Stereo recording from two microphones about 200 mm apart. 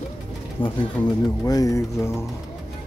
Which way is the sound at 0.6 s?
20° left (ahead or behind).